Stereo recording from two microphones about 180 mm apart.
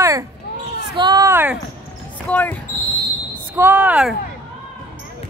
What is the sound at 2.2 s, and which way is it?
Basketball bounce, 10° left (ahead or behind).